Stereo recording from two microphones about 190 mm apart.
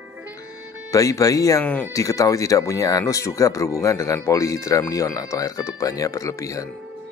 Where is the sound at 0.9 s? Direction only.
15° left (ahead or behind).